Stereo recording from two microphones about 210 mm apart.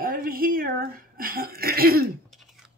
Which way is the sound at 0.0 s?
45° right (ahead or behind).